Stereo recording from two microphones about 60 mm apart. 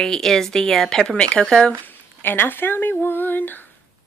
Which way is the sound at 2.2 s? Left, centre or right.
Left.